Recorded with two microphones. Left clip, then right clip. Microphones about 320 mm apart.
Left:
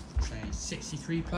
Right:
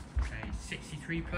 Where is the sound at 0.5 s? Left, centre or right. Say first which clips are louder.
Left 4 dB; centre.